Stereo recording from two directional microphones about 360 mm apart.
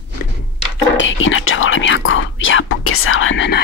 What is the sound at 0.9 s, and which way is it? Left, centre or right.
Whispering, left.